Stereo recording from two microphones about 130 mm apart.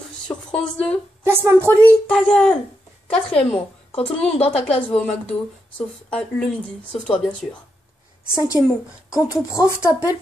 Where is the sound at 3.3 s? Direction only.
45° left (ahead or behind).